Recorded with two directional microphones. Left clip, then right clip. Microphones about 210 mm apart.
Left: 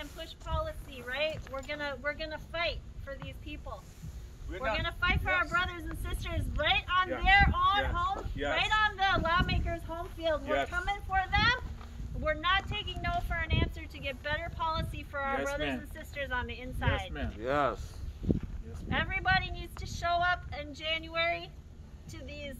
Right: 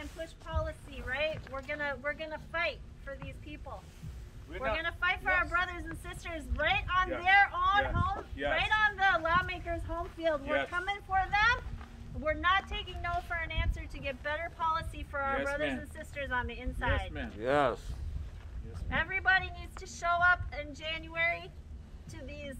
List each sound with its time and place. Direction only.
0.0 s a sound: 10° right (ahead or behind)
4.7 s speech: 10° right (ahead or behind)
17.4 s speech: 50° right (ahead or behind)
18.9 s speech: 10° right (ahead or behind)